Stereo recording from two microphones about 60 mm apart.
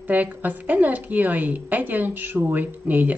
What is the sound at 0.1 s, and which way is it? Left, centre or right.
Speech, right.